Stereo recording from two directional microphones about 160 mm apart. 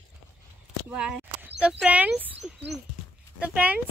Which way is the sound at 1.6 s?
5° right (ahead or behind).